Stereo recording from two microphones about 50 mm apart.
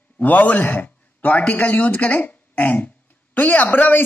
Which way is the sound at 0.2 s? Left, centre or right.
Left.